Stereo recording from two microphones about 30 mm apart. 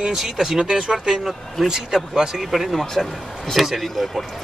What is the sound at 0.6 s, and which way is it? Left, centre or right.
Speech, right.